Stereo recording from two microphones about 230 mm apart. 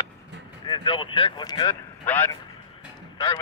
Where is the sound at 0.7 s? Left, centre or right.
Left.